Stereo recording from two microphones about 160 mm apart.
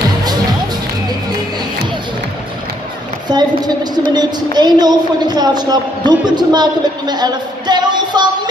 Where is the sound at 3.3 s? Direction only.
25° right (ahead or behind).